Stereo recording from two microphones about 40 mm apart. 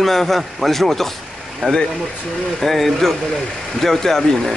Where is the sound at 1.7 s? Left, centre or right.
Left.